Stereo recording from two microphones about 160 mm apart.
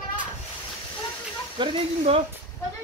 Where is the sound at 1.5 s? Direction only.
35° right (ahead or behind).